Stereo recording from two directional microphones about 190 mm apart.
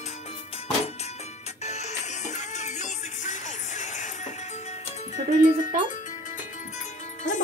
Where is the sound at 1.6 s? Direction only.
35° left (ahead or behind).